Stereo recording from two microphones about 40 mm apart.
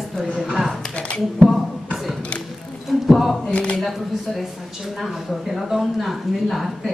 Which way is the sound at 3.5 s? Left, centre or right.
Left.